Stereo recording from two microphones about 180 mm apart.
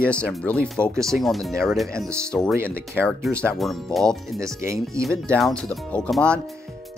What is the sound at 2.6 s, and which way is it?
Speech, 15° right (ahead or behind).